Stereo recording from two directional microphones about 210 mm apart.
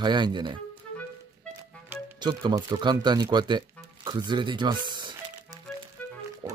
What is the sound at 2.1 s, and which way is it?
Speech, 20° right (ahead or behind).